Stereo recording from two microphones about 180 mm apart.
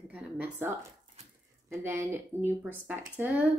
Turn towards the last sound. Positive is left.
turn(degrees=-10)  # may be behind; listen again after turning